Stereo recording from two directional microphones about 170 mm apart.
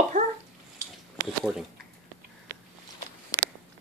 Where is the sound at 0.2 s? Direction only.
55° right (ahead or behind).